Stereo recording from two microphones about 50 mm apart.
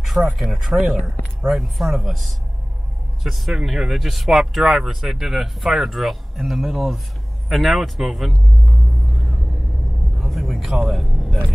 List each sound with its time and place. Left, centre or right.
0.0 s speech: centre
10.1 s vehicle: centre